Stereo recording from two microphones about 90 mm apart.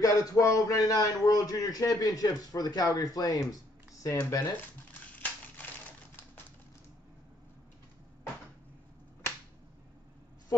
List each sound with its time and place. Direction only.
0.0 s a man's voice: 40° left (ahead or behind)
5.6 s typing: 20° left (ahead or behind)